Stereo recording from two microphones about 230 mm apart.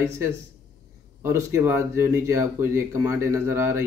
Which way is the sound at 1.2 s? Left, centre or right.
Centre.